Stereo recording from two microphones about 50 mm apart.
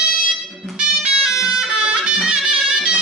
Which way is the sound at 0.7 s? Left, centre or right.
Centre.